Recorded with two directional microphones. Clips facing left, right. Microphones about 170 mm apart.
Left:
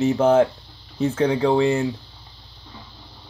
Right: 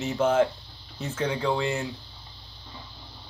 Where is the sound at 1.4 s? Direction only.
35° left (ahead or behind).